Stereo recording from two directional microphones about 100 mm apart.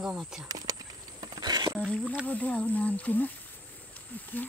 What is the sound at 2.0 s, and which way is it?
Speech, 10° right (ahead or behind).